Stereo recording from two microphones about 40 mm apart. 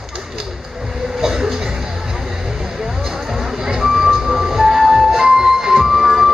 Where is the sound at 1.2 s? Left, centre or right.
Centre.